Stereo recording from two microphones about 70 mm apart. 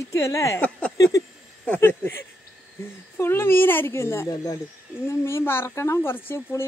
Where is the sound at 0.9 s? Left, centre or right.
Left.